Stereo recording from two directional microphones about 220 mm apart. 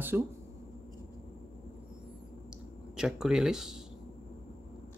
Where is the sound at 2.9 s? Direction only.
5° right (ahead or behind).